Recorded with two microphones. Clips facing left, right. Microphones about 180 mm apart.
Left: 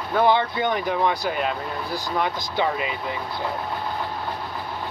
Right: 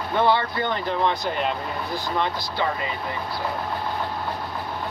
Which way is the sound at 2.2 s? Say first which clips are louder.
Left 3 dB; 15° left (ahead or behind).